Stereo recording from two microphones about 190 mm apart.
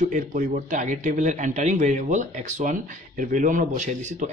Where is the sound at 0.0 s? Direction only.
45° right (ahead or behind).